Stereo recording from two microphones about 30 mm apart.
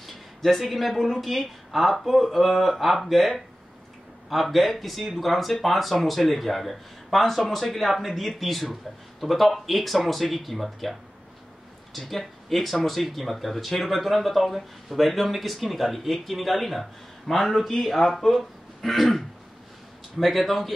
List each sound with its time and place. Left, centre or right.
0.0 s speech: centre